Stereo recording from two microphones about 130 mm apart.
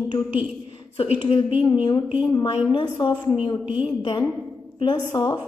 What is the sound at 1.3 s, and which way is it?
A woman's voice, 45° left (ahead or behind).